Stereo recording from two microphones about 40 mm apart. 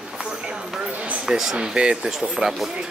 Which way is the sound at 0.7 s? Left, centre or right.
Centre.